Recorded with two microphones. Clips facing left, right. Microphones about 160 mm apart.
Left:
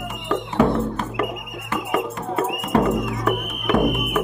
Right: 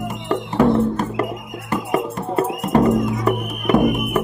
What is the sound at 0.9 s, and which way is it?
Music, 40° right (ahead or behind).